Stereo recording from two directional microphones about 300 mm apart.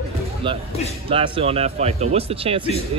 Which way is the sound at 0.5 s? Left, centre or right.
Centre.